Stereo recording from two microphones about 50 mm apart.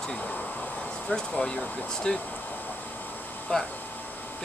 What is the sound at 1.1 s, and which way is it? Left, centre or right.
Speech, centre.